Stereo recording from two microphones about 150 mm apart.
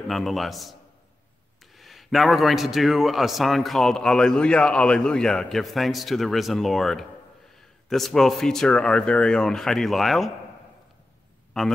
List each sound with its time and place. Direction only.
0.1 s a man's voice: centre (ahead or behind)
1.8 s a man's voice: centre (ahead or behind)
11.6 s a man's voice: centre (ahead or behind)